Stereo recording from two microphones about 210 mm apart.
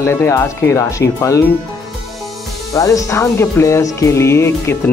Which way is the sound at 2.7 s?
15° left (ahead or behind).